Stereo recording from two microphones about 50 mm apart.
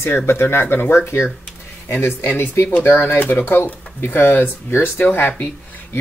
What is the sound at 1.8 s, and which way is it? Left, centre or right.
Speech, left.